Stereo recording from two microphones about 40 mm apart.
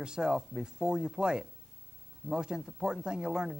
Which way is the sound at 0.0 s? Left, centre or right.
Centre.